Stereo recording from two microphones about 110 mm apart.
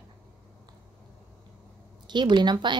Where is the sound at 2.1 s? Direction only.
45° right (ahead or behind).